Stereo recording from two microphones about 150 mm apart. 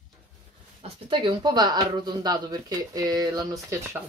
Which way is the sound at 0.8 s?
35° right (ahead or behind).